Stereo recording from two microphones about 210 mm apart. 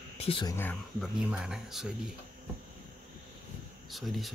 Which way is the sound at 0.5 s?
10° left (ahead or behind).